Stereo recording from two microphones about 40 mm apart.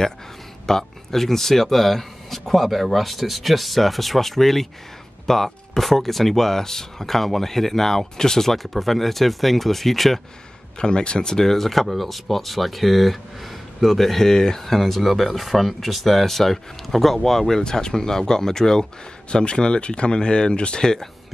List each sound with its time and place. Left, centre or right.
0.7 s speech: centre
10.8 s speech: left